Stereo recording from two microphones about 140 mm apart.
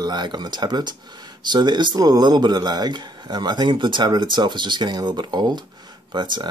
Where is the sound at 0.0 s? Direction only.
30° right (ahead or behind).